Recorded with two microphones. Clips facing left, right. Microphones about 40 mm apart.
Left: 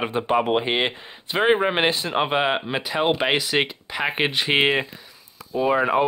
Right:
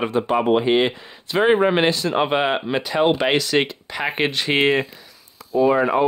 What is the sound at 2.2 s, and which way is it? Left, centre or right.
Speech, centre.